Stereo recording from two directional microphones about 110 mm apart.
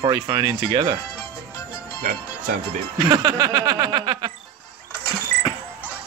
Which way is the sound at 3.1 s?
35° right (ahead or behind).